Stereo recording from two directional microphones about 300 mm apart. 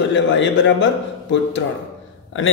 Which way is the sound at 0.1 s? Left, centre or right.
Left.